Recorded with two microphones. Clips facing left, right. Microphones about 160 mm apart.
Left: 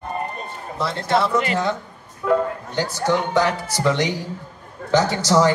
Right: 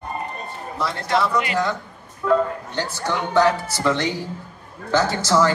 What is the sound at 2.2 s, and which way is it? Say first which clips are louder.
Speech: even; 10° left (ahead or behind).